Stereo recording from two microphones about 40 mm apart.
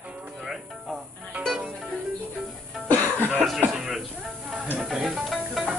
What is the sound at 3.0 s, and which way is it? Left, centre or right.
Cough, right.